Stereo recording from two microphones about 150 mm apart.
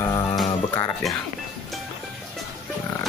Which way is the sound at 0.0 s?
30° left (ahead or behind).